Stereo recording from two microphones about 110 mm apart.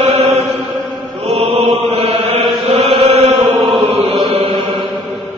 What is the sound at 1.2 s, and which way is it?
Mantra, 80° right.